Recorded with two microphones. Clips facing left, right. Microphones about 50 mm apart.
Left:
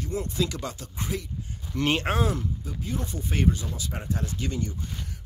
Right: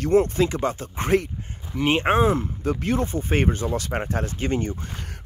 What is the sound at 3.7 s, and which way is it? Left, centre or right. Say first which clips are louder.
Speech: right 8 dB; right.